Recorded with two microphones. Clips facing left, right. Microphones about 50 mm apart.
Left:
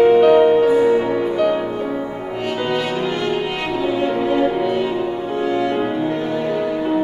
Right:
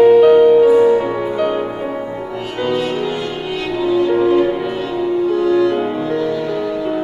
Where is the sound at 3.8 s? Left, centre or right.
Left.